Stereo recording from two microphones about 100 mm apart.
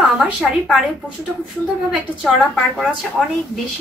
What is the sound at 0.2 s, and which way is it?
Speech, 5° right (ahead or behind).